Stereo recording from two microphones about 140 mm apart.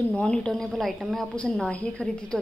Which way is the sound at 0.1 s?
5° left (ahead or behind).